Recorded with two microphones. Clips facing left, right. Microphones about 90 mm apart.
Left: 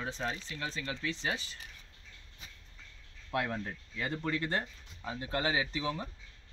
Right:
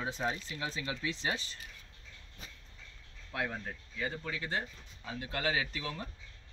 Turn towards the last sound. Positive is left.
turn(degrees=20)  # may be behind; listen again after turning